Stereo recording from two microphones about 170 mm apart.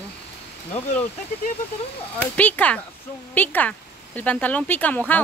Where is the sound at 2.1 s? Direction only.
10° left (ahead or behind).